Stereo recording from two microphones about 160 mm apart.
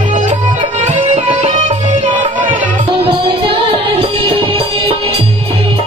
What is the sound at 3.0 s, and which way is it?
Music, 35° right (ahead or behind).